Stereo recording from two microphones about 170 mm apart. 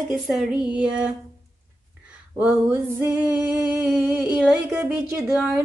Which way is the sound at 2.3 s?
10° right (ahead or behind).